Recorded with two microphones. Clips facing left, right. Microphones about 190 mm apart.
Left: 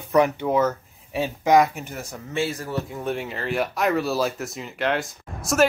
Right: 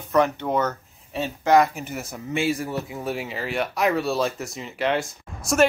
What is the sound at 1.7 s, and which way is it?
Speech, 5° right (ahead or behind).